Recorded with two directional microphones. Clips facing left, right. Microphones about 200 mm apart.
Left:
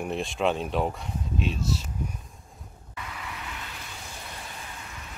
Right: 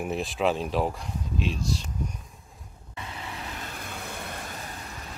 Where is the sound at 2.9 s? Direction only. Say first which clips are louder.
Right 1 dB; 30° right (ahead or behind); by 4.8 s 45° right (ahead or behind).